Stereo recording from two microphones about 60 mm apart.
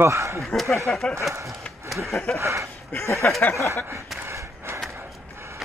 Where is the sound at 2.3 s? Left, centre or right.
Right.